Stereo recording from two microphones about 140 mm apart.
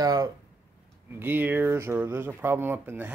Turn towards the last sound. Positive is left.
turn(degrees=-15)  # may be behind; listen again after turning